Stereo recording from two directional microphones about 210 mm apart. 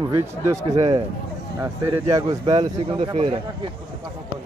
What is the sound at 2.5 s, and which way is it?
Speech, 25° right (ahead or behind).